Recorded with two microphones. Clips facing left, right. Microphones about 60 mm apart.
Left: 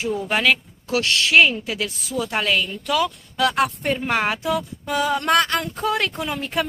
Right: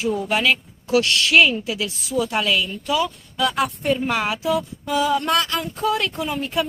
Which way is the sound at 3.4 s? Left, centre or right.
Left.